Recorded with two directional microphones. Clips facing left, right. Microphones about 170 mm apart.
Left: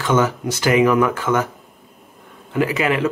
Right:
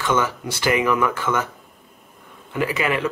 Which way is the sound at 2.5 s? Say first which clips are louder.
Left 3 dB; 15° left (ahead or behind).